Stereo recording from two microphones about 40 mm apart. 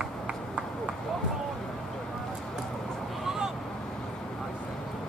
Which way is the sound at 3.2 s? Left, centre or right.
Centre.